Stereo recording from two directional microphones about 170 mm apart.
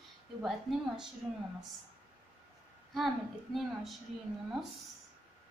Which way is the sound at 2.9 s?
Centre (ahead or behind).